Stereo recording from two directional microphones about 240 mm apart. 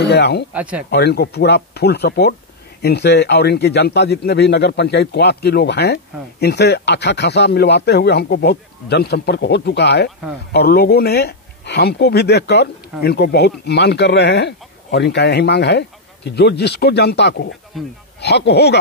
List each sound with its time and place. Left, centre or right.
0.0 s speech: left
0.5 s speech: centre
0.8 s speech: left